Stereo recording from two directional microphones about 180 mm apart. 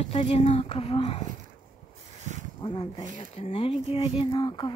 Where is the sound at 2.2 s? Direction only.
40° right (ahead or behind).